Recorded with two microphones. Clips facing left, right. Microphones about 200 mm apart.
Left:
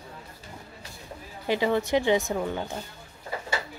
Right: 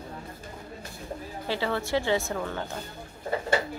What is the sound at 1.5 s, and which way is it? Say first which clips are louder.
Speech: left 4 dB; 15° left (ahead or behind).